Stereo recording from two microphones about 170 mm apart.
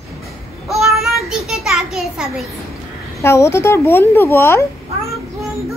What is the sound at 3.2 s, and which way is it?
Speech, 15° left (ahead or behind).